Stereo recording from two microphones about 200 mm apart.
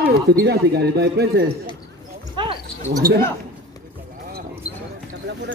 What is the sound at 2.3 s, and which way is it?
Cricket, 25° right (ahead or behind).